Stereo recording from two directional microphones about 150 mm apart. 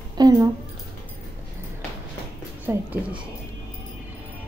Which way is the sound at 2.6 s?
10° right (ahead or behind).